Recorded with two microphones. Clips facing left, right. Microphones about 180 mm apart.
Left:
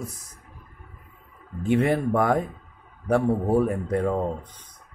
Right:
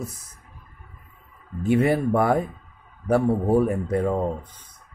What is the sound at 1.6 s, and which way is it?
A man's voice, 5° right (ahead or behind).